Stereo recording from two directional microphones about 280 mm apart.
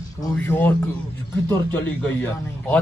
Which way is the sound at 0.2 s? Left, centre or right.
Centre.